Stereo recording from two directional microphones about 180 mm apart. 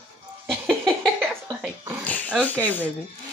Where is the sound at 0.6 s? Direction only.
5° left (ahead or behind).